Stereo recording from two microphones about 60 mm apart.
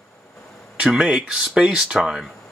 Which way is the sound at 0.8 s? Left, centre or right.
Centre.